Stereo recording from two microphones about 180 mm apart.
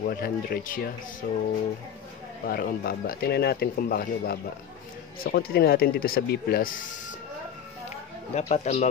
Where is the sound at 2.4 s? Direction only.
55° left (ahead or behind).